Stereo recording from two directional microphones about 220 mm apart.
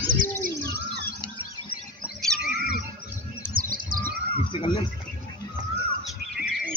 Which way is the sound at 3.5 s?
40° right (ahead or behind).